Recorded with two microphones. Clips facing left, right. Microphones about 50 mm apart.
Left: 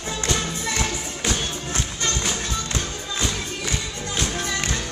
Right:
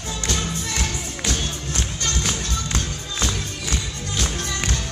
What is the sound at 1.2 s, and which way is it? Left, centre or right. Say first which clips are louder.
Music: left 1 dB; left.